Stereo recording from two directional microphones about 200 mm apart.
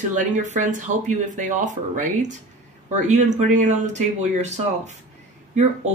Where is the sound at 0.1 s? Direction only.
40° right (ahead or behind).